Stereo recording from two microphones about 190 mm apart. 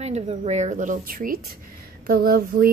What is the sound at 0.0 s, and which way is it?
Speech, 35° right (ahead or behind).